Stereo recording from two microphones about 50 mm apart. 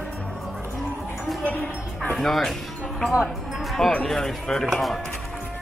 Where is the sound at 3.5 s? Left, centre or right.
Centre.